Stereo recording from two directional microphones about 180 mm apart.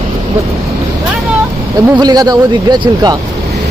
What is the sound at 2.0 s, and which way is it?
Speech, 20° right (ahead or behind).